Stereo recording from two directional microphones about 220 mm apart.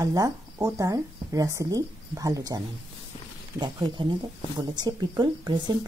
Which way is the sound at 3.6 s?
20° right (ahead or behind).